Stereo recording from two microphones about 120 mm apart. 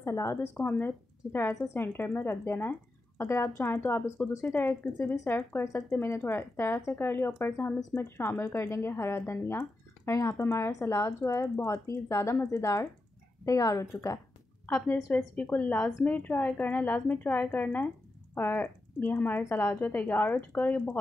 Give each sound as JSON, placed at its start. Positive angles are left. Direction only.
{"t": 0.0, "sound": "a woman's voice", "side_deg": 25}
{"t": 15.0, "sound": "a woman's voice", "side_deg": 10}